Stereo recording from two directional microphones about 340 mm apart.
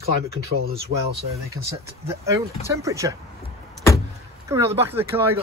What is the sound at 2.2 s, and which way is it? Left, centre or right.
Speech, centre.